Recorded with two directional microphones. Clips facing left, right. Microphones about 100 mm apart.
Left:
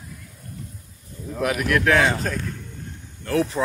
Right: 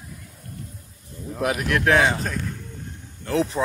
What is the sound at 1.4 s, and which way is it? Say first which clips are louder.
Speech: left 1 dB; 20° right (ahead or behind).